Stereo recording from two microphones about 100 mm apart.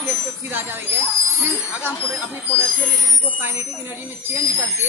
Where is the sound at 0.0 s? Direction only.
20° right (ahead or behind).